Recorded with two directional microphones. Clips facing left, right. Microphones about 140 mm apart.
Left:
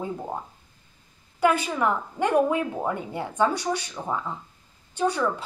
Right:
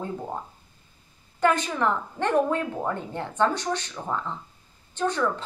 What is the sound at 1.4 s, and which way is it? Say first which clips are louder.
A woman's voice: left 1 dB; 5° left (ahead or behind).